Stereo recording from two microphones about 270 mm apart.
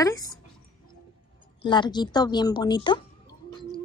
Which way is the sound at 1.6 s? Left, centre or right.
Centre.